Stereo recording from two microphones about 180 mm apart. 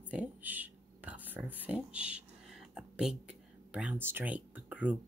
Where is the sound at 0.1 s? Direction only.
10° right (ahead or behind).